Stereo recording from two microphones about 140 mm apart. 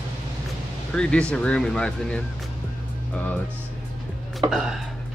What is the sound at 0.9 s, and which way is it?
Speech, 5° left (ahead or behind).